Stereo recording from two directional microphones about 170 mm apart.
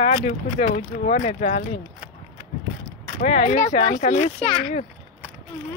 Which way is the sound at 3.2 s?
40° left (ahead or behind).